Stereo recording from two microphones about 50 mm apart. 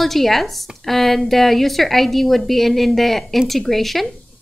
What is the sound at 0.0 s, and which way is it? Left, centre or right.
Speech, centre.